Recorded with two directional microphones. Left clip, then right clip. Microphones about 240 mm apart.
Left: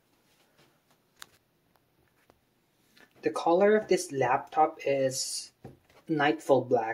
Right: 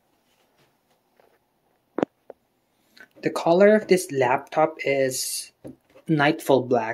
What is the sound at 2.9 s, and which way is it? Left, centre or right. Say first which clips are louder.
Speech: right 4 dB; right.